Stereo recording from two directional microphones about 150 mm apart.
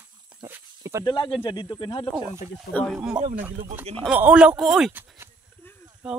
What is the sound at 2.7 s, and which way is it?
Speech, 10° left (ahead or behind).